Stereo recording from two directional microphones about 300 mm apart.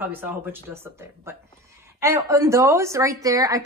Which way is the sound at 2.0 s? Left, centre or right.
Centre.